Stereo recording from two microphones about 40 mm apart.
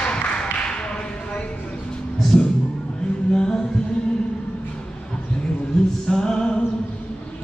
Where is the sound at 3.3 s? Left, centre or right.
Centre.